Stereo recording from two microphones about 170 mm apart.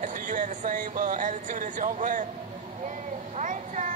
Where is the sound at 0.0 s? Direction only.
50° right (ahead or behind).